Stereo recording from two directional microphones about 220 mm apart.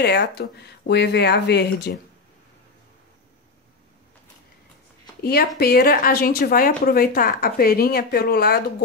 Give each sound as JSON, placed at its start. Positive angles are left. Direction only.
{"t": 0.0, "sound": "a woman's voice", "side_deg": 50}
{"t": 5.2, "sound": "a woman's voice", "side_deg": 45}